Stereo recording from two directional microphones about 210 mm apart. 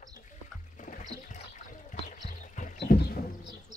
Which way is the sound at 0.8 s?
35° left (ahead or behind).